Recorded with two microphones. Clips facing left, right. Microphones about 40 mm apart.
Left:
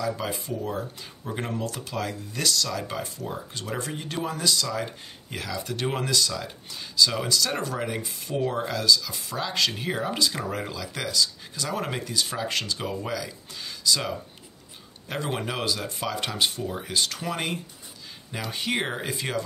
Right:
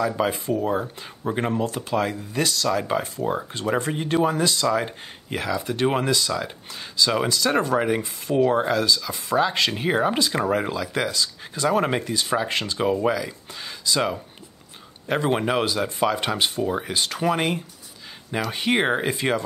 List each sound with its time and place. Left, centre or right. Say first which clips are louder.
0.0 s speech: right 6 dB; right